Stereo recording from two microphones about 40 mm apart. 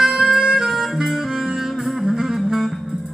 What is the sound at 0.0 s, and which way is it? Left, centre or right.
Music, centre.